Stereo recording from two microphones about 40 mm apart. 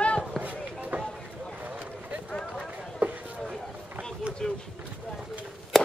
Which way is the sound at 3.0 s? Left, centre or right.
Right.